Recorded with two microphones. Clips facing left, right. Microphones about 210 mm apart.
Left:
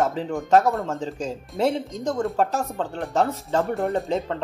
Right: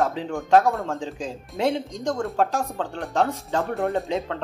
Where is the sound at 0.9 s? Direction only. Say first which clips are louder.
Left 2 dB; 40° left (ahead or behind).